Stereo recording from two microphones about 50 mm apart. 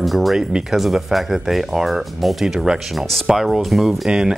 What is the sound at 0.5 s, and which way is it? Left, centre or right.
Speech, centre.